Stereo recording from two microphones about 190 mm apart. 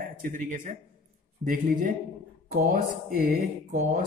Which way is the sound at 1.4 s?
45° right (ahead or behind).